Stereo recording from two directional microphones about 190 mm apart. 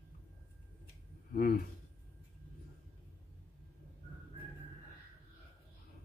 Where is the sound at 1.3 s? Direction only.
50° left (ahead or behind).